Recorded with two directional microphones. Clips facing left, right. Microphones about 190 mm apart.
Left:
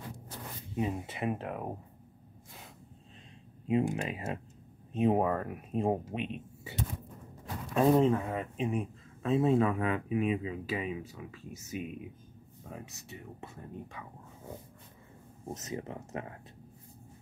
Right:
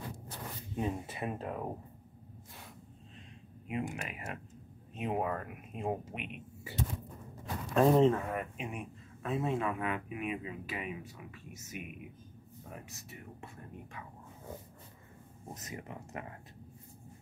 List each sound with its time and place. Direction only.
0.7 s speech: 15° left (ahead or behind)
3.6 s speech: 30° left (ahead or behind)
7.7 s speech: 5° left (ahead or behind)
8.3 s speech: 30° left (ahead or behind)
15.4 s speech: 25° left (ahead or behind)